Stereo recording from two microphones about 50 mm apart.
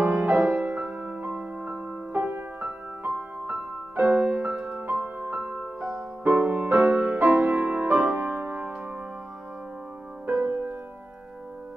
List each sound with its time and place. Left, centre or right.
0.0 s music: right
0.7 s music: right
4.7 s music: right
5.8 s music: centre
6.2 s music: right
7.2 s music: right
10.2 s music: right